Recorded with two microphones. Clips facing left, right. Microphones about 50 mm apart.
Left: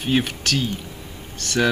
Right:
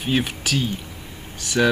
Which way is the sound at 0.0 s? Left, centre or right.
Centre.